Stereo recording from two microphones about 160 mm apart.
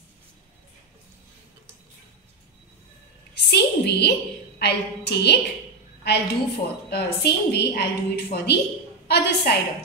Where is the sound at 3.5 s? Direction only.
90° left.